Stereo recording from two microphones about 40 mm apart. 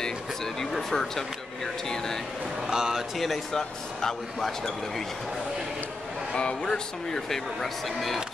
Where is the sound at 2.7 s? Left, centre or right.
Centre.